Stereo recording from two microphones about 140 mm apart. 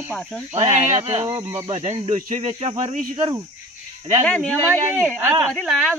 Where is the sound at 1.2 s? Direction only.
25° right (ahead or behind).